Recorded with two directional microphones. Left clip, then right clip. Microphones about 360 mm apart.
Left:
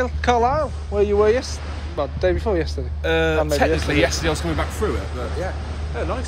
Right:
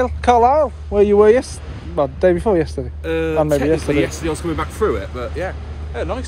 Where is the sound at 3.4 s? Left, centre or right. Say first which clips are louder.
Right 3 dB; centre.